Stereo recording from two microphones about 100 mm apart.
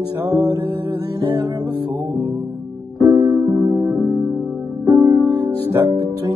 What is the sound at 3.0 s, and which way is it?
Music, 30° right (ahead or behind).